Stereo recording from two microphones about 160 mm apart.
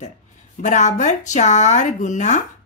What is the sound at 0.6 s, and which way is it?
Speech, 50° left (ahead or behind).